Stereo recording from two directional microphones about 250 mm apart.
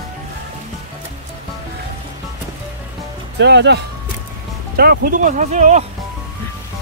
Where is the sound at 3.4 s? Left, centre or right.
Right.